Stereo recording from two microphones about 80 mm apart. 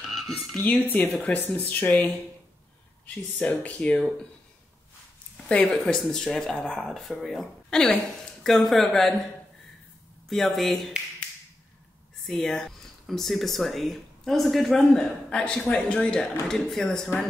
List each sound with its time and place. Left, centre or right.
0.1 s speech: centre
0.7 s speech: centre
3.3 s speech: centre
5.5 s speech: centre
10.3 s speech: centre
12.3 s speech: centre